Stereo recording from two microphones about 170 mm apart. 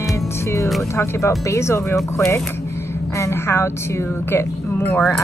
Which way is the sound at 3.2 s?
15° left (ahead or behind).